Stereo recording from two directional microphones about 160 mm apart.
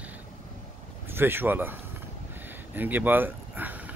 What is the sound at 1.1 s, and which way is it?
Speech, 15° right (ahead or behind).